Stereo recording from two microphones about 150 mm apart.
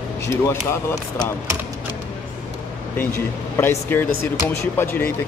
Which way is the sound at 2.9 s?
15° left (ahead or behind).